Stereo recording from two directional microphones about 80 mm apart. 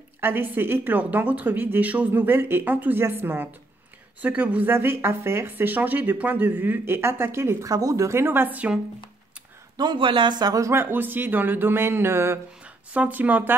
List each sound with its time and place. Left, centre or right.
0.2 s speech: right
7.7 s speech: right
9.8 s speech: right
10.6 s speech: right
12.6 s speech: centre